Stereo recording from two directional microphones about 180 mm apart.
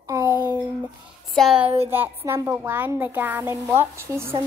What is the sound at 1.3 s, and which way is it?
Speech, centre (ahead or behind).